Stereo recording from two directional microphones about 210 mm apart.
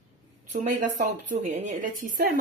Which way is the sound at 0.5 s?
35° right (ahead or behind).